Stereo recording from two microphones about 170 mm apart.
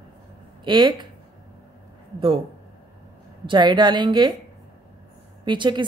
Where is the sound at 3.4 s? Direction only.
25° right (ahead or behind).